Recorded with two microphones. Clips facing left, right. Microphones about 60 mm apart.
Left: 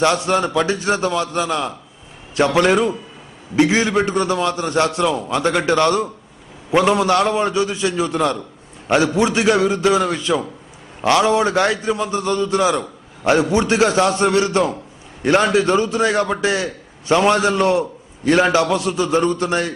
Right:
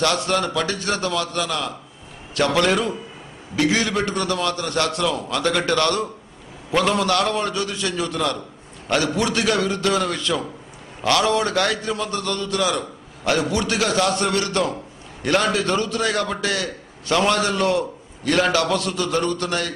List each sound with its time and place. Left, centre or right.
0.0 s a man's voice: left